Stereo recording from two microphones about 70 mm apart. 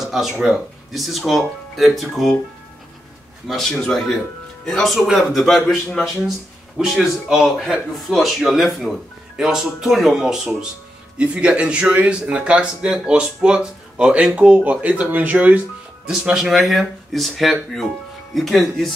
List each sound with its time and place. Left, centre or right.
0.0 s speech: centre
3.4 s speech: centre
6.8 s speech: centre; by 15.6 s right
16.1 s speech: centre